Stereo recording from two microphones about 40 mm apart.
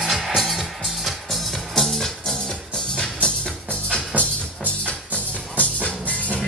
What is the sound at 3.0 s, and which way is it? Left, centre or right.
Music, left.